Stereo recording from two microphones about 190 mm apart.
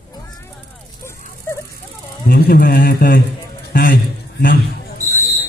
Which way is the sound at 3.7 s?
50° left (ahead or behind).